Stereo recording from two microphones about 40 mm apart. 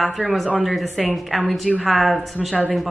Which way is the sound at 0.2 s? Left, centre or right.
Right.